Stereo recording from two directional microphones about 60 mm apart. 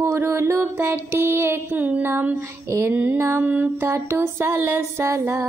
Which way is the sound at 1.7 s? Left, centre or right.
Right.